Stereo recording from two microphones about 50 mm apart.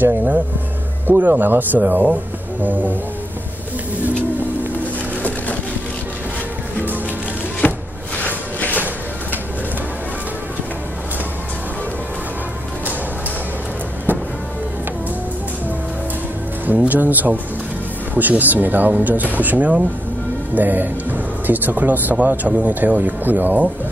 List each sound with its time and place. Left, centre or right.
0.0 s speech: right
7.6 s a sound: left
8.2 s walk: left
8.7 s a sound: right
14.1 s music: right
16.7 s speech: right